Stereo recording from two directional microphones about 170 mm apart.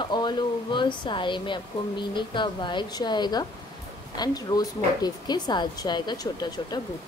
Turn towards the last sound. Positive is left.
turn(degrees=25)  # may be behind; listen again after turning